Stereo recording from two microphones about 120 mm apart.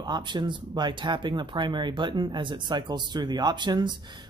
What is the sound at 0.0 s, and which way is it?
Speech, 35° right (ahead or behind).